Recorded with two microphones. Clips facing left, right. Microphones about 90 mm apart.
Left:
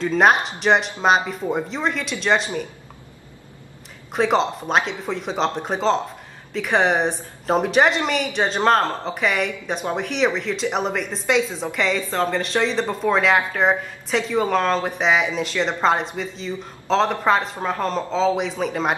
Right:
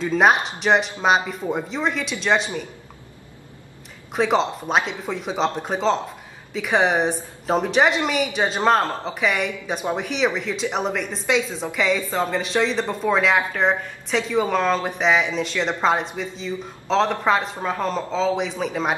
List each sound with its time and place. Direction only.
0.0 s speech: centre (ahead or behind)
4.1 s speech: centre (ahead or behind)